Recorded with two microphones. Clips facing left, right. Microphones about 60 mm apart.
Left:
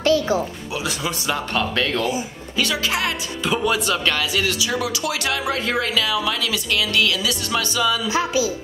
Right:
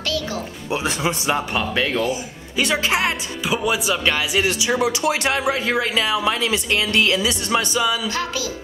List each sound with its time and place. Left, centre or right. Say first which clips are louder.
0.0 s music: left 7 dB; left
0.7 s speech: right 3 dB; right
2.0 s speech: left 1 dB; right
3.4 s speech: even; centre
8.1 s speech: left 5 dB; centre